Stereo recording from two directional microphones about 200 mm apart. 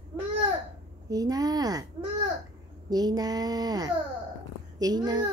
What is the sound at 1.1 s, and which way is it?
Speech, 20° right (ahead or behind).